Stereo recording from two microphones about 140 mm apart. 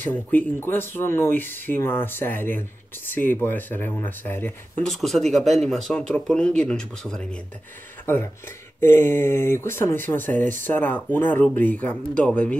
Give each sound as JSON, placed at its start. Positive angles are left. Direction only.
{"t": 0.0, "sound": "speech", "side_deg": 10}
{"t": 4.8, "sound": "speech", "side_deg": 0}
{"t": 5.4, "sound": "speech", "side_deg": -55}
{"t": 5.7, "sound": "speech", "side_deg": 0}
{"t": 8.1, "sound": "speech", "side_deg": 15}